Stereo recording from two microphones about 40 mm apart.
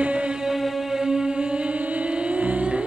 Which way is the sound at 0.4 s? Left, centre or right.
Centre.